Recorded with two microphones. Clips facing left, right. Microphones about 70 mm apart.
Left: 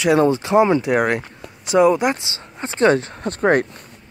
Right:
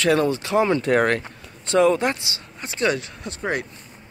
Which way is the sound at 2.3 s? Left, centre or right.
Left.